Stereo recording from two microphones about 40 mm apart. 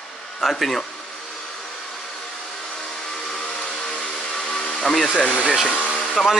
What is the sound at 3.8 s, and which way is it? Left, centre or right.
Vehicle, centre.